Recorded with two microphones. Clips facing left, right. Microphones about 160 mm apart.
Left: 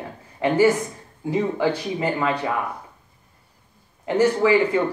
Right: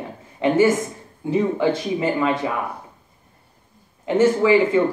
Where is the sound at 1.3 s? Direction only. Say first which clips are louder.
Right 2 dB; 25° right (ahead or behind).